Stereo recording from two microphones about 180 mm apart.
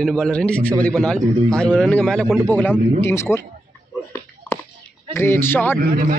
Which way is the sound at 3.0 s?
15° left (ahead or behind).